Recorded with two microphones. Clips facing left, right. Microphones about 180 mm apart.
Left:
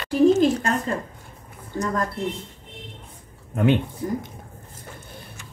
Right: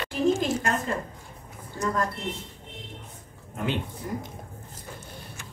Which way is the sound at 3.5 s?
60° left (ahead or behind).